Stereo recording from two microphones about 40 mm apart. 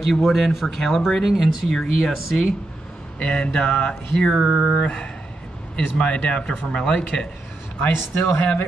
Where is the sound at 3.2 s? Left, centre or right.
Left.